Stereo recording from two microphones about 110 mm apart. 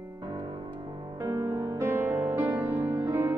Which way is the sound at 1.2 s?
25° right (ahead or behind).